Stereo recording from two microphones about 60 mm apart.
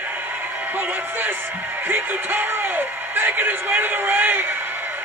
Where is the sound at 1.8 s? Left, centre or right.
Right.